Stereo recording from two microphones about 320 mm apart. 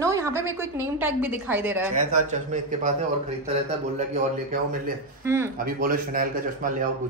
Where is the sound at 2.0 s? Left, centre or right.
Right.